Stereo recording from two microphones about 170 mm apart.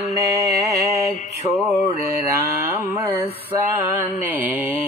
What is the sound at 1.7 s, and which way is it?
Mantra, 40° left (ahead or behind).